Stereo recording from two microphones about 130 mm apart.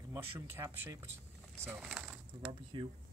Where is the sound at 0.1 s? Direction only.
20° right (ahead or behind).